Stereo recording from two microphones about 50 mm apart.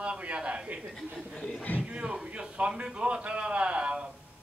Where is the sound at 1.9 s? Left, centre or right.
Right.